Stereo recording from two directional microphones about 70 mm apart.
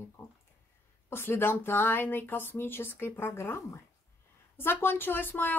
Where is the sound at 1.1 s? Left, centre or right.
Left.